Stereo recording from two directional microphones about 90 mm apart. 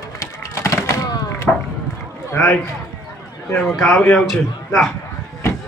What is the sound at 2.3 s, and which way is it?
Speech, 10° left (ahead or behind).